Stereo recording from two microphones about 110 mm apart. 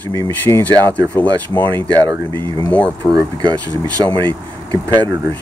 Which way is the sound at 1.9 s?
35° right (ahead or behind).